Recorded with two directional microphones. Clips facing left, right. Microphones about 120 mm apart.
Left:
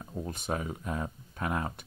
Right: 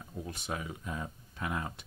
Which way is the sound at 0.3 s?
45° left (ahead or behind).